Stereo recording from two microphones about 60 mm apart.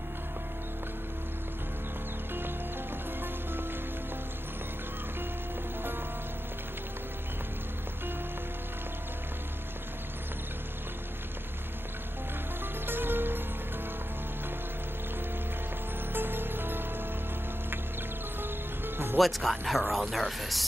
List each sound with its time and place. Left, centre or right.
12.8 s music: right
16.1 s music: right
19.1 s speech: centre